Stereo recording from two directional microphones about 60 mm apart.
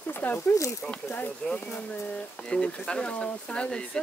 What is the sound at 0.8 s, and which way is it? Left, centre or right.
Speech, centre.